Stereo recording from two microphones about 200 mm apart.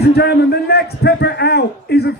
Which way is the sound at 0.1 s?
55° left (ahead or behind).